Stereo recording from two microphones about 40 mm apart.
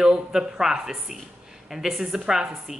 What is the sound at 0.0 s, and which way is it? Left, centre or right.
Speech, centre.